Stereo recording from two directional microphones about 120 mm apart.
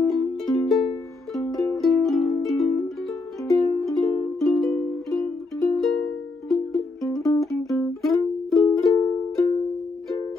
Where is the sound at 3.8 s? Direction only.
5° left (ahead or behind).